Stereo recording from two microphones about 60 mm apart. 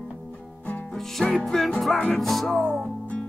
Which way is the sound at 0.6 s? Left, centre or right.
Left.